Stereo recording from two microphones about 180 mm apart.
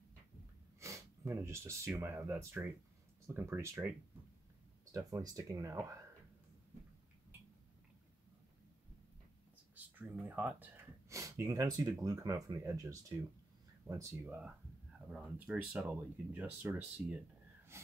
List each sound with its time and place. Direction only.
0.7 s speech: 15° right (ahead or behind)
4.9 s speech: 20° right (ahead or behind)
9.9 s speech: 10° right (ahead or behind)